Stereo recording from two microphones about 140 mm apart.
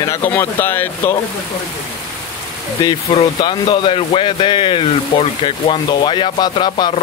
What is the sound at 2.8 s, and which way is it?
Speech, 30° left (ahead or behind).